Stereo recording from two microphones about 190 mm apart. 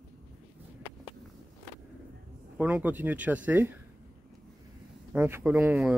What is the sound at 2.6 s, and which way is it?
Speech, 10° right (ahead or behind).